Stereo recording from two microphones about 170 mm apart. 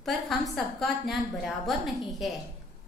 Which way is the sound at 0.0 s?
Centre (ahead or behind).